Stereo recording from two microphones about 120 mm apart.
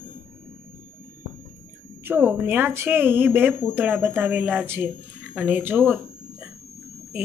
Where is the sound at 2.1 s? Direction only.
15° right (ahead or behind).